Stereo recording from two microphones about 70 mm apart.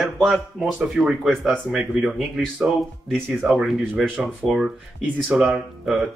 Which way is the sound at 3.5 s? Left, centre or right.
Centre.